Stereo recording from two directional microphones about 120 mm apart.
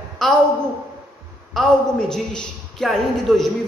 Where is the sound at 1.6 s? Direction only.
5° left (ahead or behind).